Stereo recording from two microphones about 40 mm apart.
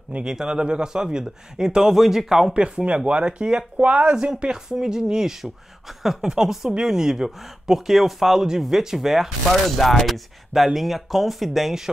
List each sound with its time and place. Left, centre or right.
0.2 s speech: centre
2.5 s speech: right
4.2 s speech: right
9.5 s speech: centre